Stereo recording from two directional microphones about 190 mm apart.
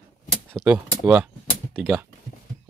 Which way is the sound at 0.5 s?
5° right (ahead or behind).